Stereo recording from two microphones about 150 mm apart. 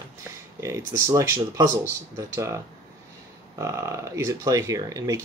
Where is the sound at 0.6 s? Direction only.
20° right (ahead or behind).